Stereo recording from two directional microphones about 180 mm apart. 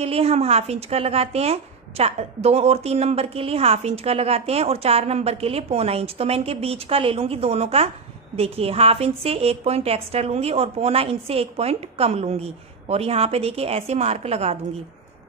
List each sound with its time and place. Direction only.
0.0 s a woman's voice: 35° right (ahead or behind)